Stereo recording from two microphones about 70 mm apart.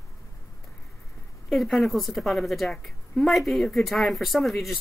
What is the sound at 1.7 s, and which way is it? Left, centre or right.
A woman's voice, centre.